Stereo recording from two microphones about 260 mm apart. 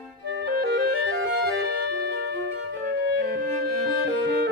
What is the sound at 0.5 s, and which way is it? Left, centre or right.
Clarinet, right.